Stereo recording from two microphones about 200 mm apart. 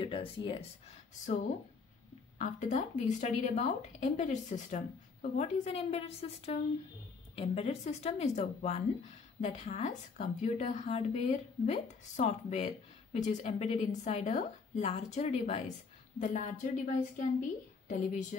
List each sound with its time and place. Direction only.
0.0 s speech: 25° left (ahead or behind)
2.3 s a woman's voice: 35° left (ahead or behind)